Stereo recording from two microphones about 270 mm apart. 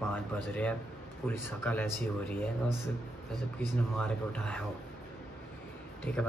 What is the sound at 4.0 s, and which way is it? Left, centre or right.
Speech, centre.